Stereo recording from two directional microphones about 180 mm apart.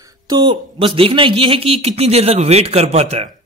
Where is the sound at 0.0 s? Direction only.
20° right (ahead or behind); by 3.3 s 35° right (ahead or behind).